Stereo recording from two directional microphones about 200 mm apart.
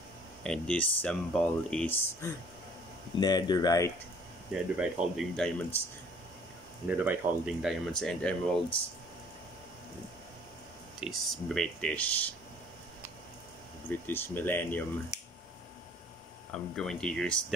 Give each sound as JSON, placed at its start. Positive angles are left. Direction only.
{"t": 0.4, "sound": "speech", "side_deg": 5}
{"t": 4.7, "sound": "speech", "side_deg": -5}
{"t": 6.9, "sound": "speech", "side_deg": -5}
{"t": 11.0, "sound": "speech", "side_deg": 0}
{"t": 14.0, "sound": "speech", "side_deg": 10}
{"t": 16.5, "sound": "speech", "side_deg": 5}